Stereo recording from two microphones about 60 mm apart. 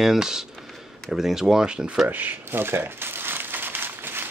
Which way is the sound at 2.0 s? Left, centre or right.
Right.